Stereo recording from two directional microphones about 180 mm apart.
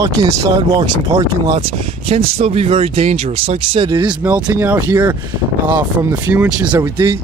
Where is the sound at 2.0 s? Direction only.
30° right (ahead or behind).